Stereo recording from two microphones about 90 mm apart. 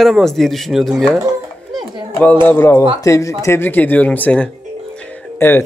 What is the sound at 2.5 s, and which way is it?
Speech, 30° left (ahead or behind).